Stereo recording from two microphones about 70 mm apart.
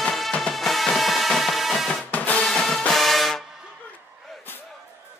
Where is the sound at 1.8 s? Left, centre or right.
Left.